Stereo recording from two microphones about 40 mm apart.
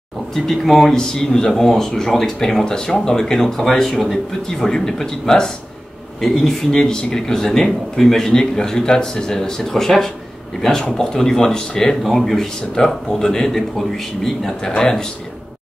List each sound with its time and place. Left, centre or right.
0.5 s speech: centre
0.9 s a man's voice: centre
12.0 s a man's voice: centre